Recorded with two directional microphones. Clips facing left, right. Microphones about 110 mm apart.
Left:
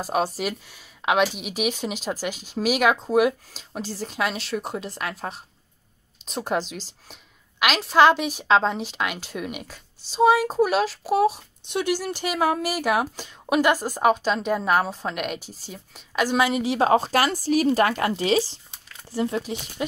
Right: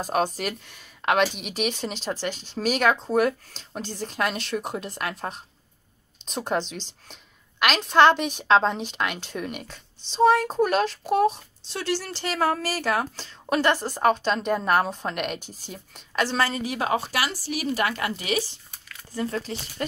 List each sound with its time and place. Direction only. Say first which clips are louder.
0.0 s speech: left 1 dB; 5° left (ahead or behind); by 18.4 s 30° left (ahead or behind)
18.5 s a sound: even; 25° left (ahead or behind)
19.4 s speech: left 2 dB; 10° left (ahead or behind)